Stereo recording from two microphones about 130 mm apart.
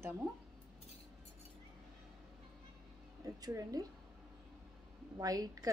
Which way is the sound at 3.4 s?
30° right (ahead or behind).